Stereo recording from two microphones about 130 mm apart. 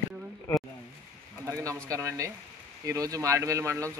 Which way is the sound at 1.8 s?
25° right (ahead or behind).